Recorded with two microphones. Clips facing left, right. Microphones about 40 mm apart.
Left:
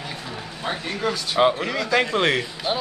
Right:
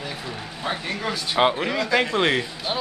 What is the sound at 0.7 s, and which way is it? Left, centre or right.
Speech, centre.